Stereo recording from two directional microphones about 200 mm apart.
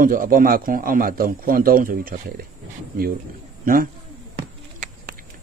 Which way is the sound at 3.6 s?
45° right (ahead or behind).